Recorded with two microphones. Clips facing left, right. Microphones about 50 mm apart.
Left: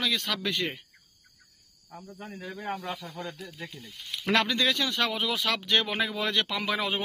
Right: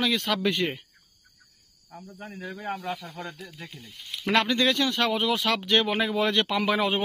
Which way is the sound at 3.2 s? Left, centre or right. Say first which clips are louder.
Even; right.